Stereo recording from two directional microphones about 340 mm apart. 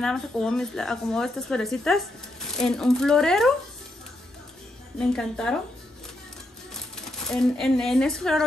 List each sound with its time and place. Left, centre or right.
0.0 s speech: centre
4.9 s speech: centre
6.7 s speech: centre